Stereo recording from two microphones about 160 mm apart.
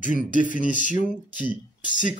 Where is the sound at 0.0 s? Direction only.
55° left (ahead or behind).